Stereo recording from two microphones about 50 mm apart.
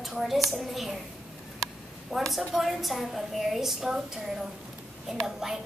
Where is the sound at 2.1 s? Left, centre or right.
Centre.